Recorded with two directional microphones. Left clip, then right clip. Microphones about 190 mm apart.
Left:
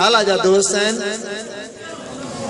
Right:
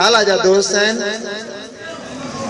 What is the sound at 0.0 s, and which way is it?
Speech, 55° left (ahead or behind).